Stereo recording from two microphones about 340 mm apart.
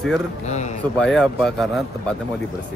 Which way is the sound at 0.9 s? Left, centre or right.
Centre.